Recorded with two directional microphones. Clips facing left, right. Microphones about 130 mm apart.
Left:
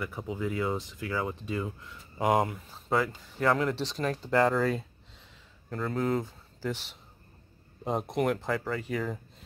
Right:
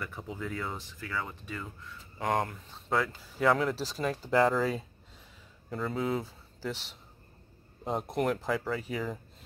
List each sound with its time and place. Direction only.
0.0 s speech: 10° left (ahead or behind)
2.3 s speech: 5° left (ahead or behind)